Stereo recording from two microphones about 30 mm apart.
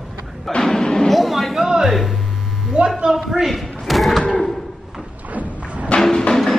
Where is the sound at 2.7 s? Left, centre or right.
Right.